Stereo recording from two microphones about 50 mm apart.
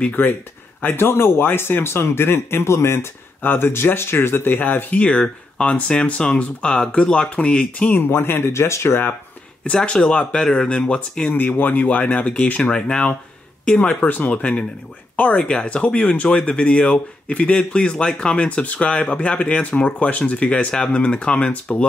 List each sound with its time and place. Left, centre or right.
0.1 s speech: left
0.9 s speech: left
3.4 s speech: left
5.0 s speech: left
8.0 s speech: left
9.7 s speech: centre
11.3 s speech: left; by 13.9 s centre
14.0 s speech: left
14.3 s speech: left